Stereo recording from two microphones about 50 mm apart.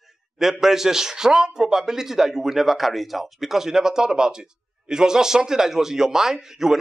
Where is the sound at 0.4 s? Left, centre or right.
Centre.